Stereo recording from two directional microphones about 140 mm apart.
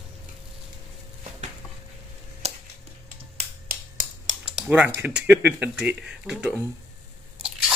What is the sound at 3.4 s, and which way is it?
Finger snapping, 85° right.